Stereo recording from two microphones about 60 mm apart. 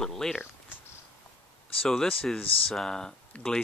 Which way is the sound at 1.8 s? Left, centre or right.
Centre.